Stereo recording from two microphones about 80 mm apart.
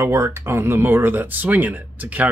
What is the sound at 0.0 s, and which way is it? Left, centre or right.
Speech, right.